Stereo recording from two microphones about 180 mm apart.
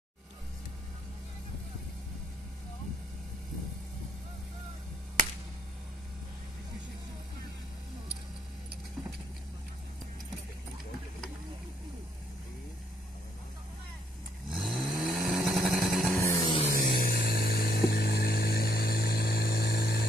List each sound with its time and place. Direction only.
14.5 s vehicle: centre (ahead or behind)
16.2 s vehicle: 15° left (ahead or behind)
16.6 s a sound: 55° left (ahead or behind)